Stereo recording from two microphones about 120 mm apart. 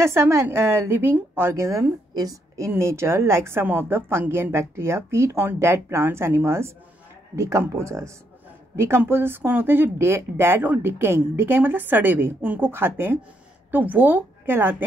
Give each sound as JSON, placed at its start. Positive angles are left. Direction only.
{"t": 0.0, "sound": "a woman's voice", "side_deg": -20}